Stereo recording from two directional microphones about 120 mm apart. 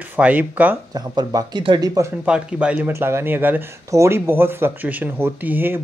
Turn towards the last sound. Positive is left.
turn(degrees=-15)  # may be behind; listen again after turning